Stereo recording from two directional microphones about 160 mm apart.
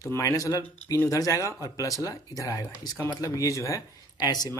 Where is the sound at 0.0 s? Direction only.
20° left (ahead or behind).